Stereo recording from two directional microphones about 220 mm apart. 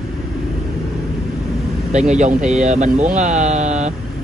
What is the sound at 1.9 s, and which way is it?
Speech, 30° right (ahead or behind).